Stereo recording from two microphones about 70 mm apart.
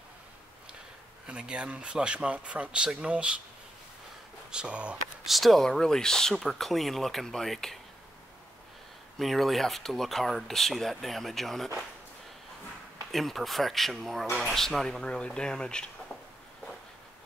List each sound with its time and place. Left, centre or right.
1.2 s speech: centre
4.5 s speech: centre
5.2 s speech: centre
9.2 s speech: centre
13.1 s speech: centre